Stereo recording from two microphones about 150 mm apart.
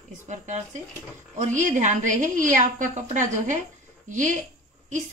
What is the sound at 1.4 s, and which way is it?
A woman's voice, 55° right (ahead or behind).